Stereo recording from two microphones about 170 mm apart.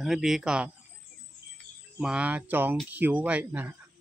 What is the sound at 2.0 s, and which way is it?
Speech, 5° right (ahead or behind).